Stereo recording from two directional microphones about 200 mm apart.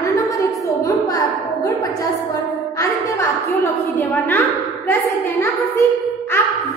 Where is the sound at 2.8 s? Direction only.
15° left (ahead or behind).